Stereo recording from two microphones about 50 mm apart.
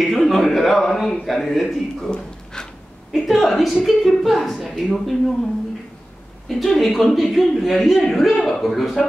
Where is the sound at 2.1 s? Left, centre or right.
Centre.